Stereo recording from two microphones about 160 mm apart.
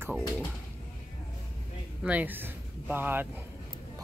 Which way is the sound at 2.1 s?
10° right (ahead or behind).